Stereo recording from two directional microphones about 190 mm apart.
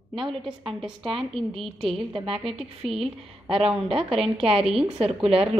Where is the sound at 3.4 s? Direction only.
30° right (ahead or behind).